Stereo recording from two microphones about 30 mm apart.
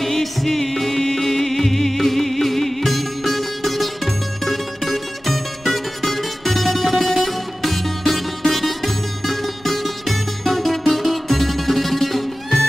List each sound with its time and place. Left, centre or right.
0.0 s music: centre